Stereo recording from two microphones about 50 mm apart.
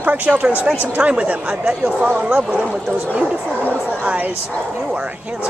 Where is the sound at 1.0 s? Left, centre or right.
Right.